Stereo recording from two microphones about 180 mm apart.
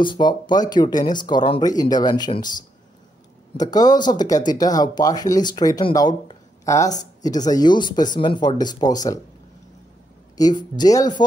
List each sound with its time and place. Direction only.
0.0 s speech: 25° left (ahead or behind)
3.5 s speech: 20° left (ahead or behind)
10.3 s speech: 20° left (ahead or behind)